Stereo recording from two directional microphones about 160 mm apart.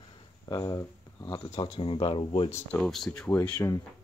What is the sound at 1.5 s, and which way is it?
Speech, 35° left (ahead or behind).